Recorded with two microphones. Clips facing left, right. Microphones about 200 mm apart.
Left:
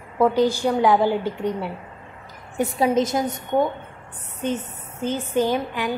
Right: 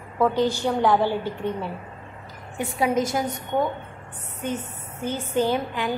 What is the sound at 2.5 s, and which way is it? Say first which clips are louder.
Speech: left 3 dB; 30° left (ahead or behind).